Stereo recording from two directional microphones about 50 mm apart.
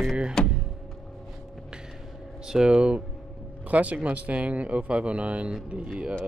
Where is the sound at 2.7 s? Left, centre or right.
Right.